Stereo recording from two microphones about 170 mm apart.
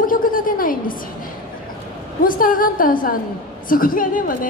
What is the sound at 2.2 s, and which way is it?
A woman's voice, 55° left (ahead or behind).